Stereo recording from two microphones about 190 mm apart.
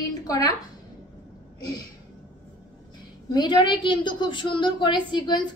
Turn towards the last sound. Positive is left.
turn(degrees=25)  # may be behind; listen again after turning